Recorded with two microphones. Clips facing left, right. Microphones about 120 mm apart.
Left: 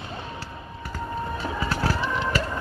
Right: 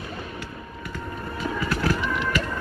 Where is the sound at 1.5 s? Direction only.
30° left (ahead or behind).